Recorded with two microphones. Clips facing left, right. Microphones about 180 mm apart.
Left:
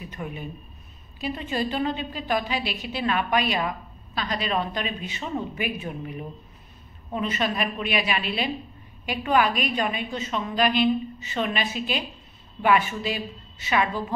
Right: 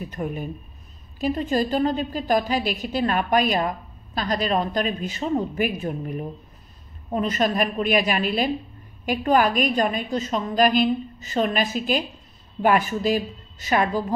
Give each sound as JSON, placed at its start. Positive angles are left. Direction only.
{"t": 0.0, "sound": "a woman's voice", "side_deg": -45}